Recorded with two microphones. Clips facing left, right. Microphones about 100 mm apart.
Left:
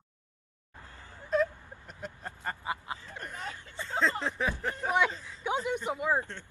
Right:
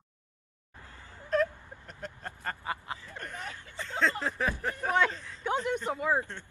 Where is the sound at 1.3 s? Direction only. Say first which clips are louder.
Even; 5° left (ahead or behind); by 3.9 s 20° left (ahead or behind).